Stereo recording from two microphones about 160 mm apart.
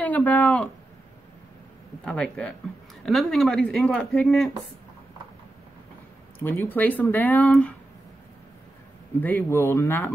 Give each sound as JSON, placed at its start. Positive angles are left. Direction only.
{"t": 0.0, "sound": "speech", "side_deg": 10}
{"t": 2.0, "sound": "speech", "side_deg": 5}
{"t": 6.4, "sound": "speech", "side_deg": 15}
{"t": 9.2, "sound": "speech", "side_deg": 15}